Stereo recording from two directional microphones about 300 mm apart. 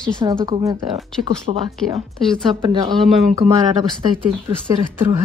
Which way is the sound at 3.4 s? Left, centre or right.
Centre.